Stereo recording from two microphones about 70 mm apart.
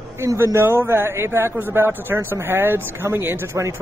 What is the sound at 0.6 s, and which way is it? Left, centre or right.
Speech, right.